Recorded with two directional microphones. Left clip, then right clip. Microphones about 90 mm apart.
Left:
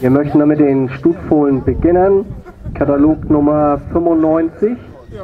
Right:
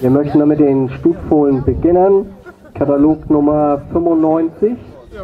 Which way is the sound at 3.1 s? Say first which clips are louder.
Even; 60° left (ahead or behind).